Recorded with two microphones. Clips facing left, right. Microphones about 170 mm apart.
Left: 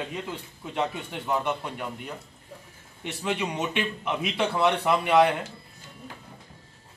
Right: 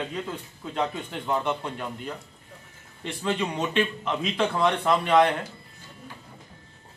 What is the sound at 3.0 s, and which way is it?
Speech, 15° left (ahead or behind).